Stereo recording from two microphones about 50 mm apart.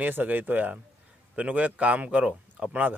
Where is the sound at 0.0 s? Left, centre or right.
Right.